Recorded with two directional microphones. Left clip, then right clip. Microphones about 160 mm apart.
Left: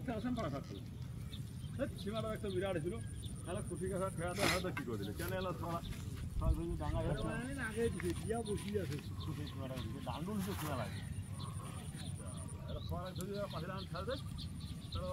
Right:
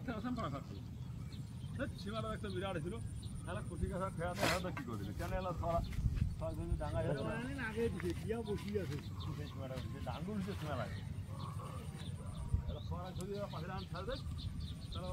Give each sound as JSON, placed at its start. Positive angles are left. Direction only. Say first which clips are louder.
{"t": 0.0, "sound": "a sound", "louder": "left 1 dB", "side_deg": 20}
{"t": 1.8, "sound": "speech", "louder": "left 2 dB", "side_deg": 10}
{"t": 4.4, "sound": "speech", "louder": "left 1 dB", "side_deg": -25}
{"t": 4.6, "sound": "speech", "louder": "left 3 dB", "side_deg": 5}
{"t": 13.0, "sound": "speech", "louder": "even", "side_deg": 10}